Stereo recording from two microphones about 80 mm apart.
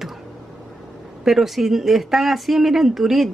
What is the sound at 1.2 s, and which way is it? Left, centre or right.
Speech, centre.